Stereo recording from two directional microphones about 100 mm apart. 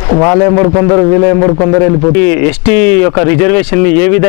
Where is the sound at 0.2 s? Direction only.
25° left (ahead or behind).